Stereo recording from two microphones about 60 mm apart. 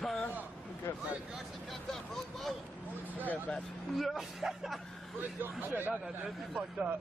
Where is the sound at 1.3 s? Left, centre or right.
Centre.